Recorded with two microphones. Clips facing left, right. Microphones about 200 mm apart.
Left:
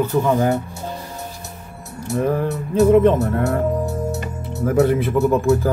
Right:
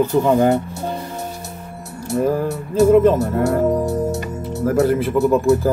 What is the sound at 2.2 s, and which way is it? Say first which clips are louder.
Music: right 1 dB; 5° right (ahead or behind).